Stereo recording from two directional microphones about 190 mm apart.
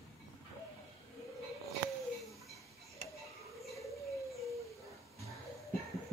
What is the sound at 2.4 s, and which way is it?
Tick-tock, centre (ahead or behind).